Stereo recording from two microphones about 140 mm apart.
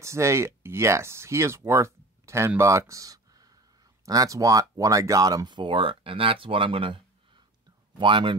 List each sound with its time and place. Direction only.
0.0 s speech: 20° right (ahead or behind); by 7.0 s 40° right (ahead or behind)
8.0 s speech: 35° right (ahead or behind)